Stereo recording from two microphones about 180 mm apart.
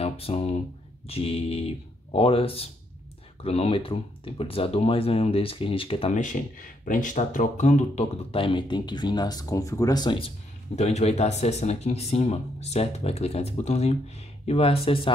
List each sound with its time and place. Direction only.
0.0 s speech: 35° left (ahead or behind)
10.8 s speech: 35° left (ahead or behind)